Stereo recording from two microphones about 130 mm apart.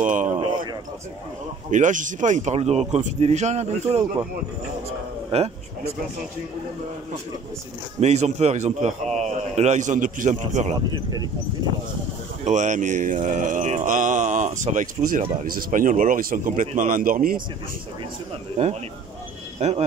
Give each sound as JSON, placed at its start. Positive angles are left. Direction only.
{"t": 0.0, "sound": "a man's voice", "side_deg": -75}
{"t": 1.7, "sound": "speech", "side_deg": -80}
{"t": 5.3, "sound": "speech", "side_deg": -55}
{"t": 8.0, "sound": "a man's voice", "side_deg": -60}
{"t": 12.4, "sound": "speech", "side_deg": -70}
{"t": 18.6, "sound": "speech", "side_deg": -60}